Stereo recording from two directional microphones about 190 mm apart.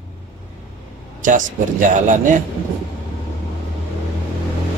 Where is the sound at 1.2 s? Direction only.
45° right (ahead or behind).